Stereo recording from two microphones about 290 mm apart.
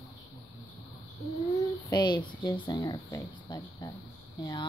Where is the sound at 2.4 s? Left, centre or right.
Centre.